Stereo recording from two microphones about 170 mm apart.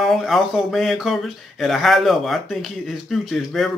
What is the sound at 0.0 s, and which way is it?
Speech, centre (ahead or behind).